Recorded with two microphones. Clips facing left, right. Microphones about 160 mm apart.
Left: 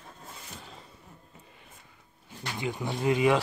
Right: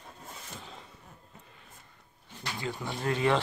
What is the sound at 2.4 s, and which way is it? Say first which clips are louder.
Speech: left 3 dB; 20° left (ahead or behind).